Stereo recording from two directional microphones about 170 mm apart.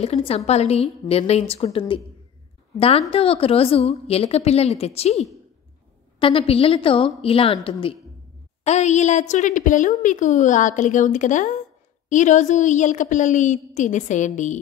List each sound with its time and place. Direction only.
0.0 s a woman's voice: 35° left (ahead or behind)
3.1 s a woman's voice: 35° left (ahead or behind)
8.6 s a woman's voice: 40° left (ahead or behind)